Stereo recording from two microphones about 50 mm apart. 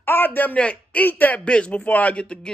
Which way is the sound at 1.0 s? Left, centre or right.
Left.